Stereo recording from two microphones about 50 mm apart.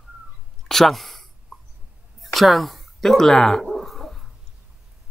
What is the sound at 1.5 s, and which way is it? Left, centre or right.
Hiccup, centre.